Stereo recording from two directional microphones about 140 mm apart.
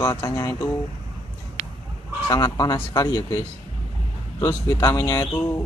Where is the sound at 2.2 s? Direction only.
25° left (ahead or behind).